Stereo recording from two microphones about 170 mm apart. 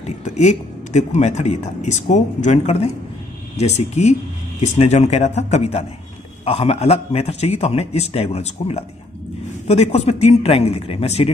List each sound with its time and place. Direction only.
0.0 s a man's voice: 45° left (ahead or behind)